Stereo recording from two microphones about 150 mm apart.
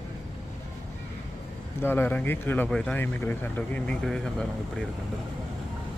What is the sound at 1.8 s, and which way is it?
Speech, 15° left (ahead or behind).